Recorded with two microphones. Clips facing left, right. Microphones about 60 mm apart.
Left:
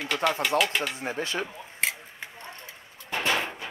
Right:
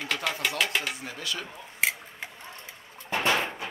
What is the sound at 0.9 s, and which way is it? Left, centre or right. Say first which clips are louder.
Speech: left 5 dB; left.